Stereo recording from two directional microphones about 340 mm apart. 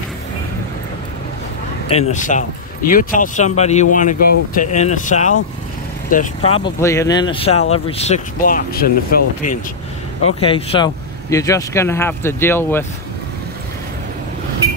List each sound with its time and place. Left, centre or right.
1.9 s speech: centre
10.2 s speech: centre